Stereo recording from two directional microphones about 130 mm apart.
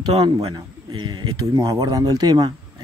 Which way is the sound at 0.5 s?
35° right (ahead or behind).